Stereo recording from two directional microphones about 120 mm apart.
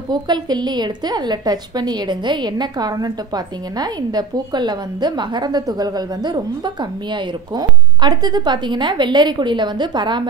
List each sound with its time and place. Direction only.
0.1 s a woman's voice: 35° right (ahead or behind)